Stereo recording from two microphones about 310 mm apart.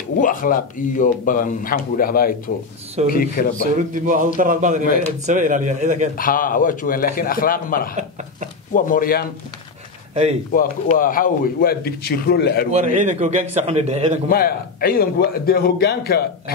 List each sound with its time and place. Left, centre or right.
0.2 s speech: left
3.7 s a man's voice: right
6.1 s speech: left
10.5 s speech: left
12.7 s a man's voice: right
14.3 s speech: left